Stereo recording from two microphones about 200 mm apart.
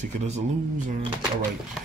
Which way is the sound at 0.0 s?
35° right (ahead or behind).